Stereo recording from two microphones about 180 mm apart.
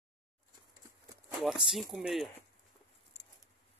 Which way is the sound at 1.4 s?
Centre (ahead or behind).